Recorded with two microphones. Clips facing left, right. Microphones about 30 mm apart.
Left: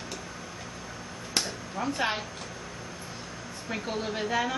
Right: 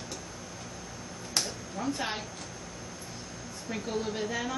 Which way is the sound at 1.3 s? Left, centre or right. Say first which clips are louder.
Left 2 dB; left.